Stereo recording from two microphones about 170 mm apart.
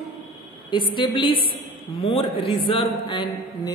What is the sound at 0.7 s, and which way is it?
Speech, 30° left (ahead or behind).